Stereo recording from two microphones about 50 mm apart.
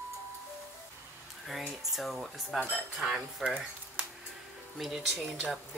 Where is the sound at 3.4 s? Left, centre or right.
Centre.